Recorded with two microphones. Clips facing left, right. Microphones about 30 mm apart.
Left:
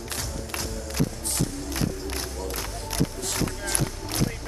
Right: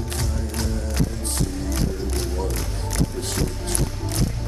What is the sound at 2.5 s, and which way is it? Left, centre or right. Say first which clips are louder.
Music: right 3 dB; centre.